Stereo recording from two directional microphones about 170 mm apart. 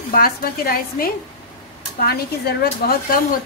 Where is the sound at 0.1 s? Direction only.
60° left (ahead or behind).